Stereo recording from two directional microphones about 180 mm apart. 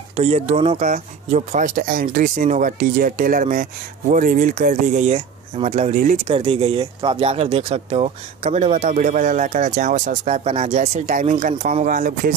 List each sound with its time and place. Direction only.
0.1 s speech: 35° right (ahead or behind)
6.2 s speech: 30° right (ahead or behind)